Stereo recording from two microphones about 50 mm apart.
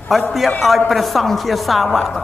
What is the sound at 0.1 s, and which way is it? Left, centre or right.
A woman's voice, centre.